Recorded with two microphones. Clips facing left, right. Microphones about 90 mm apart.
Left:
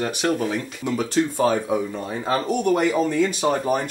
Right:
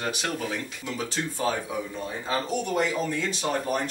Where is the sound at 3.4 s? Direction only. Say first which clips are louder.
Left 4 dB; 40° left (ahead or behind).